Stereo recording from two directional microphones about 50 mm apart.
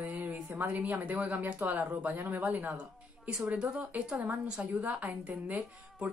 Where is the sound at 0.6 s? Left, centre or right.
Right.